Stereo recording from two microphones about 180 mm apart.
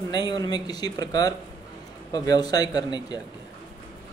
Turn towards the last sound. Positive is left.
turn(degrees=20)  # may be behind; listen again after turning